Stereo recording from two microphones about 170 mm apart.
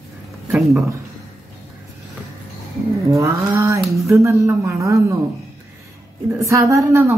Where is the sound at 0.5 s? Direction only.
Centre (ahead or behind).